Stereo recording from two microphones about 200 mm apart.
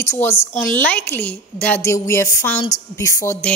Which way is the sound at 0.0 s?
15° left (ahead or behind).